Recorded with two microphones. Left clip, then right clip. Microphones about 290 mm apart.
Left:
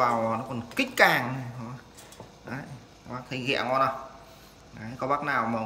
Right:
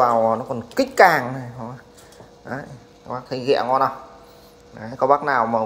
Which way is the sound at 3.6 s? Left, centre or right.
Centre.